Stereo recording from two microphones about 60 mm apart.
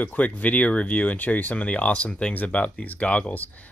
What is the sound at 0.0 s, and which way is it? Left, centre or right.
Speech, left.